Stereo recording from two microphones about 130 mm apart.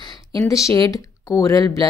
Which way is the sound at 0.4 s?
25° left (ahead or behind).